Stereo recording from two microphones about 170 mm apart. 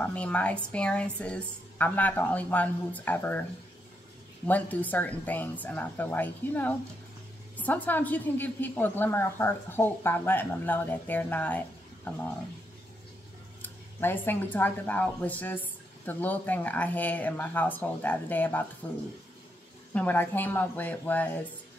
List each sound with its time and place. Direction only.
0.0 s speech: 5° left (ahead or behind)
4.5 s speech: 10° left (ahead or behind)
13.6 s speech: 10° left (ahead or behind)
19.9 s speech: 10° left (ahead or behind)